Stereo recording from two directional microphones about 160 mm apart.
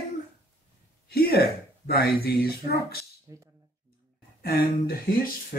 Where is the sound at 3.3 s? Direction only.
20° right (ahead or behind).